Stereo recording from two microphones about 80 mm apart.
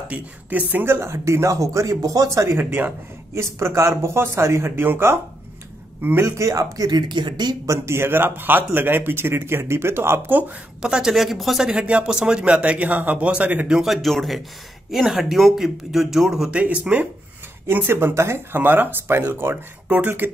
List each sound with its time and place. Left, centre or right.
0.1 s speech: centre
0.9 s speech: right
6.2 s speech: right
6.9 s speech: right
7.6 s speech: right
10.8 s a man's voice: centre
13.7 s speech: centre; by 20.2 s right